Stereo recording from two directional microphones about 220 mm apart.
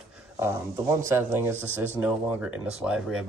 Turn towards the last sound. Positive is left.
turn(degrees=0)  # may be behind; listen again after turning